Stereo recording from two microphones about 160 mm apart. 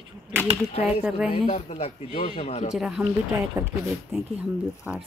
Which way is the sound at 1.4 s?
45° left (ahead or behind).